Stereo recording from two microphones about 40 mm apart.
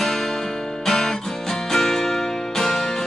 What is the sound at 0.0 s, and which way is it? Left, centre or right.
Music, centre.